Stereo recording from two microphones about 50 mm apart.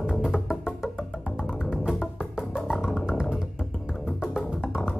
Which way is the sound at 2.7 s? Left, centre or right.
Centre.